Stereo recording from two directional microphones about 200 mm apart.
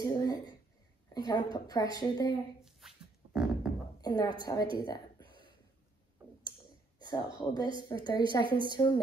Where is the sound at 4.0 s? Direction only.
20° left (ahead or behind).